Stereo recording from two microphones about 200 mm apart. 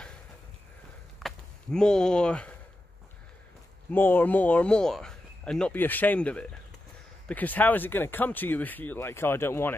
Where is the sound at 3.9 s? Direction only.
10° left (ahead or behind).